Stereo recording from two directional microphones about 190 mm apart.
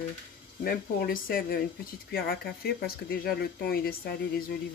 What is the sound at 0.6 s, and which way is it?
Speech, 50° left (ahead or behind).